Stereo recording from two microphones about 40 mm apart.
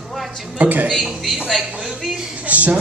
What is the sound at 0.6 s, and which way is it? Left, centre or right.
Speech, right.